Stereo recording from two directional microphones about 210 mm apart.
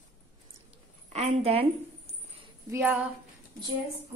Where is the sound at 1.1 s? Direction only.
30° right (ahead or behind).